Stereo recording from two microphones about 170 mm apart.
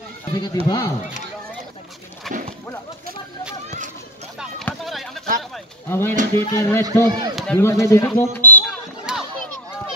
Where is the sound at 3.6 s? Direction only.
45° right (ahead or behind).